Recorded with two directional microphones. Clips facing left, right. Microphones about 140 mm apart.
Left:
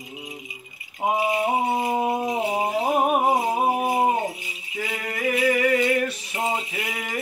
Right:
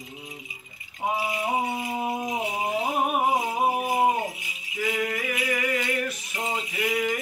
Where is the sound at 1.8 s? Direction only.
50° left (ahead or behind).